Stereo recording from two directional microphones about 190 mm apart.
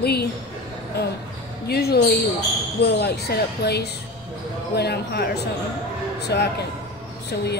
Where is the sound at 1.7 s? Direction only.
55° left (ahead or behind).